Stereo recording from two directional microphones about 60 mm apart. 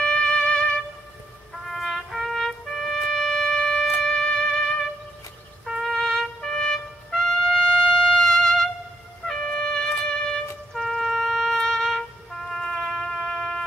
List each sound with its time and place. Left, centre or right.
0.0 s music: centre
1.7 s trumpet: centre
4.0 s music: centre
5.7 s trumpet: centre
9.3 s music: centre